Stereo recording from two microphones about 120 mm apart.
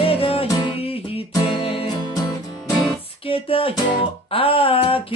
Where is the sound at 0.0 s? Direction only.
50° left (ahead or behind).